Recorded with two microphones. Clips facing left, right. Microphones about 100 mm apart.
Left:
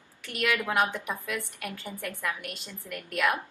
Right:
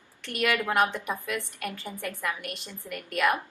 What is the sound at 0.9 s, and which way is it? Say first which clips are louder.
Speech: right 2 dB; 15° right (ahead or behind).